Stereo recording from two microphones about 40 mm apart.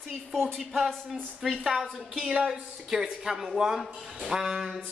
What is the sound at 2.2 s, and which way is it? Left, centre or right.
Speech, centre.